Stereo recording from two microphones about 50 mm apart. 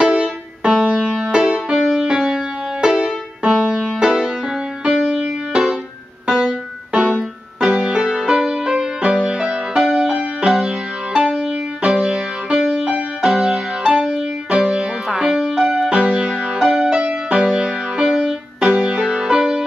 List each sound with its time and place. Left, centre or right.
0.0 s music: centre
6.2 s piano: centre
10.4 s music: right
11.1 s music: centre
15.0 s music: centre
18.7 s music: right